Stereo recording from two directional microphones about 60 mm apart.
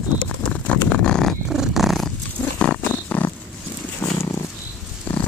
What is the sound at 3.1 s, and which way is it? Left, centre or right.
Purr, left.